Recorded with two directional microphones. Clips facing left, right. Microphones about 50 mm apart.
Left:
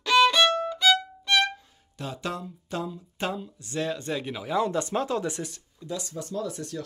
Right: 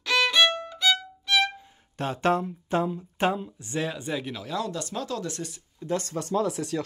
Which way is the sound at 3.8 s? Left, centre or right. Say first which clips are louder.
Left 2 dB; centre.